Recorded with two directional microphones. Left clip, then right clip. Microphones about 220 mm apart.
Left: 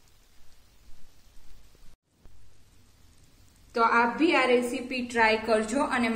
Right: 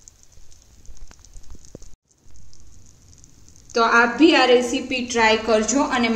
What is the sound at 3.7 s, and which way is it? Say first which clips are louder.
A woman's voice: right 7 dB; 5° right (ahead or behind).